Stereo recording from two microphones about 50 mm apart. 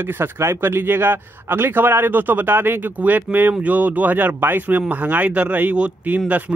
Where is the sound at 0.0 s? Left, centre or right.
Right.